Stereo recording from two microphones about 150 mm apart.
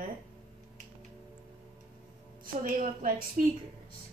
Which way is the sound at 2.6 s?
60° right (ahead or behind).